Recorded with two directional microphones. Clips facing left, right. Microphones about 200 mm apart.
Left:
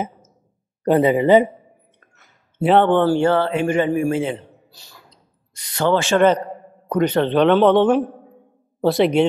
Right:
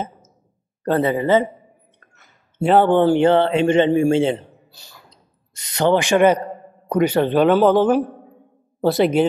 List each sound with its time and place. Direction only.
0.8 s speech: 15° left (ahead or behind)
2.6 s speech: centre (ahead or behind)
2.9 s speech: 15° right (ahead or behind)
5.6 s a man's voice: 20° right (ahead or behind); by 9.3 s centre (ahead or behind)